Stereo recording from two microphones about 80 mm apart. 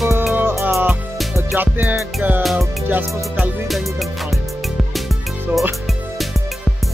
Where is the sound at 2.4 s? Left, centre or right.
Centre.